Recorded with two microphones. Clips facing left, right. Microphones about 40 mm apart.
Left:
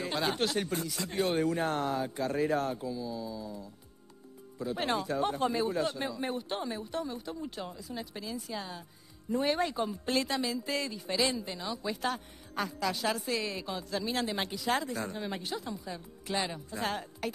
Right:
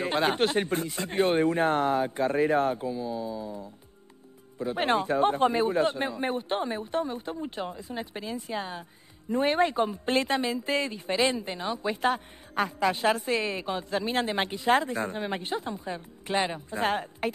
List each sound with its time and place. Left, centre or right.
0.0 s speech: right